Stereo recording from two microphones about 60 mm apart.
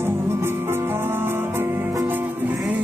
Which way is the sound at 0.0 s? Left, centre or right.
Right.